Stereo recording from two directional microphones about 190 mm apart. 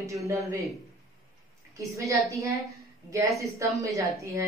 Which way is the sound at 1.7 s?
15° right (ahead or behind).